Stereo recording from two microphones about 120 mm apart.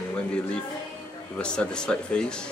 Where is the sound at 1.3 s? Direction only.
10° left (ahead or behind).